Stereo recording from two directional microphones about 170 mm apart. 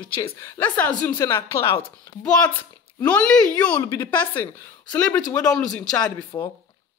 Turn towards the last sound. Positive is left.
turn(degrees=25)  # may be behind; listen again after turning